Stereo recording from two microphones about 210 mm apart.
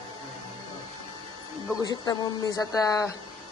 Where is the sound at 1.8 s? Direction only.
20° left (ahead or behind).